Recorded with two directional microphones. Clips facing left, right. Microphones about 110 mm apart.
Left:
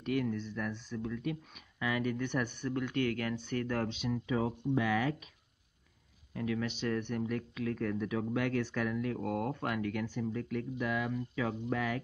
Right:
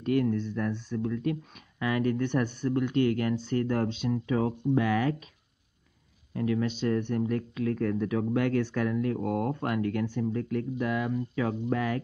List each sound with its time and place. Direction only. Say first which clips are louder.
0.2 s speech: right 7 dB; 45° right (ahead or behind)
2.8 s speech: right 7 dB; 25° right (ahead or behind)
4.3 s speech: right 5 dB; 50° right (ahead or behind)
6.3 s speech: right 6 dB; 40° right (ahead or behind)